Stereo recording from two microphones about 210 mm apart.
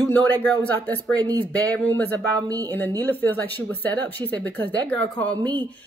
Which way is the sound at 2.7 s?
10° left (ahead or behind).